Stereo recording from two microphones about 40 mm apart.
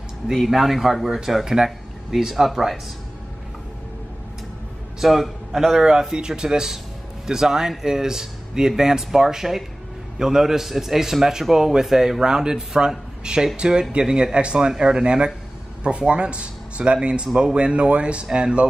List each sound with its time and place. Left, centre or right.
0.5 s speech: centre
5.0 s speech: centre; by 18.7 s right